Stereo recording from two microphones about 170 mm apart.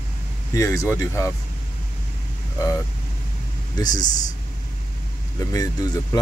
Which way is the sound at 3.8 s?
25° left (ahead or behind).